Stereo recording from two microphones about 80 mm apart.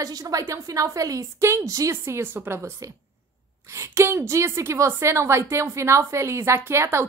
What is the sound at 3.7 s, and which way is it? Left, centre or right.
A woman's voice, right.